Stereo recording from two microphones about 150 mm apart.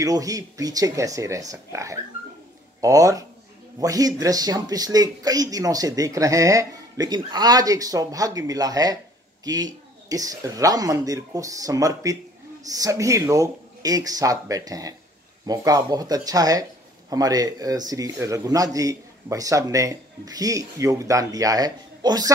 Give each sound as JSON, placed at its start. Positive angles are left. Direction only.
{"t": 0.0, "sound": "speech", "side_deg": -25}